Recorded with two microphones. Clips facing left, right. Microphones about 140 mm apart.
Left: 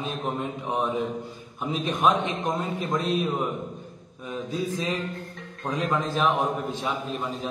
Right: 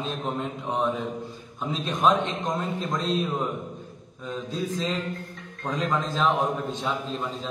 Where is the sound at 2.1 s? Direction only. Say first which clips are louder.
Right 1 dB; 10° left (ahead or behind).